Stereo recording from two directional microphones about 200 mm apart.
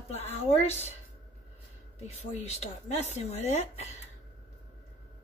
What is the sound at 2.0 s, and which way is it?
Speech, 35° left (ahead or behind).